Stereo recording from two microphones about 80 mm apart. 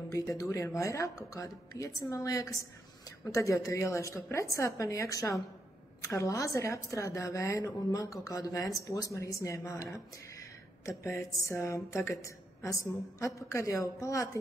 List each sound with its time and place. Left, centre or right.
0.1 s a woman's voice: left
10.9 s a woman's voice: left